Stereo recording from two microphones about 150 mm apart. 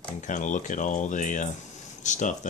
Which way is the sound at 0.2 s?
55° left (ahead or behind).